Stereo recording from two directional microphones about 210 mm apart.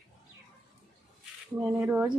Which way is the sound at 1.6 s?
10° right (ahead or behind).